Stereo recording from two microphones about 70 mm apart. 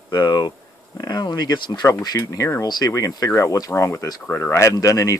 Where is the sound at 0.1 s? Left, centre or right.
Left.